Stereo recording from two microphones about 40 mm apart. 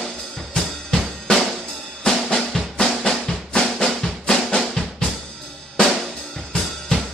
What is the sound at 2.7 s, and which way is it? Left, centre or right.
Drum, centre.